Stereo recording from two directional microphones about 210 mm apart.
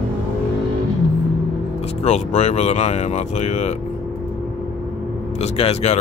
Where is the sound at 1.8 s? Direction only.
30° left (ahead or behind).